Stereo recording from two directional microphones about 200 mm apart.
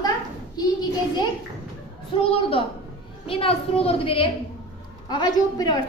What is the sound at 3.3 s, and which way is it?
A woman's voice, 30° left (ahead or behind).